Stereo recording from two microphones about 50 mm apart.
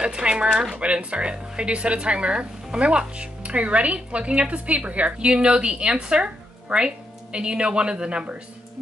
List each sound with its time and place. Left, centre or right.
0.0 s speech: centre